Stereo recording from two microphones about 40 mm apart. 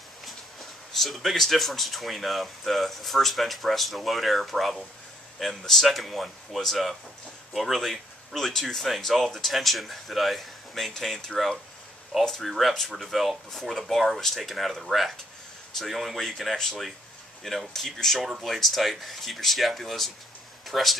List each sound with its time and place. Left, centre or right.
0.2 s a sound: centre
1.4 s speech: centre
16.2 s speech: centre